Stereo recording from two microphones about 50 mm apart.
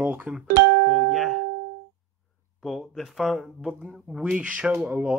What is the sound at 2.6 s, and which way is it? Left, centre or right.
Speech, centre.